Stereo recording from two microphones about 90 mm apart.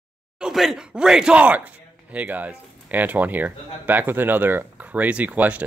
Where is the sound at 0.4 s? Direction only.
5° right (ahead or behind).